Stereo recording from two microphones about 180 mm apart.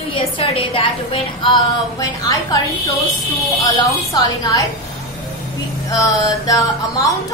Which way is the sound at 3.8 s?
20° left (ahead or behind).